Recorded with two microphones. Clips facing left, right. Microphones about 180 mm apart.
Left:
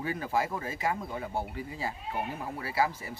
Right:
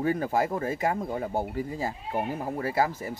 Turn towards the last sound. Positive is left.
turn(degrees=-45)  # may be behind; listen again after turning